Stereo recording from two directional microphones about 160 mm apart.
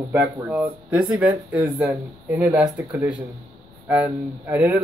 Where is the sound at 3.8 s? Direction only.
10° right (ahead or behind).